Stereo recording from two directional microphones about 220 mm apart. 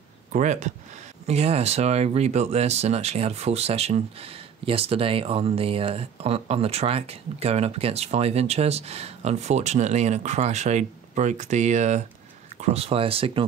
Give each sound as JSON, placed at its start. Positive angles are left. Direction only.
{"t": 0.3, "sound": "speech", "side_deg": -35}